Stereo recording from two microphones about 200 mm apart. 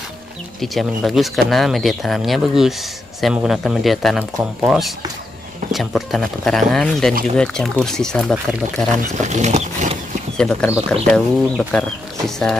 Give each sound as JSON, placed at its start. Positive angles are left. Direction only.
{"t": 0.6, "sound": "speech", "side_deg": 0}
{"t": 9.2, "sound": "speech", "side_deg": -35}
{"t": 10.3, "sound": "speech", "side_deg": 5}